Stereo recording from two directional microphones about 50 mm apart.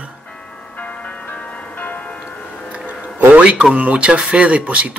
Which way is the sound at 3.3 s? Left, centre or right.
Right.